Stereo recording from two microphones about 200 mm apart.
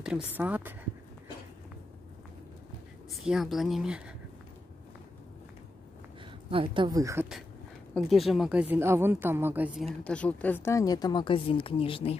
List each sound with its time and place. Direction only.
0.3 s speech: 10° right (ahead or behind)
3.1 s a woman's voice: centre (ahead or behind)
6.5 s speech: 25° right (ahead or behind)
7.9 s speech: centre (ahead or behind); by 12.2 s 30° left (ahead or behind)